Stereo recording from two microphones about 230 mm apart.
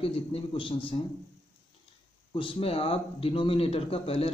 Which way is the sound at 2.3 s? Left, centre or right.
Left.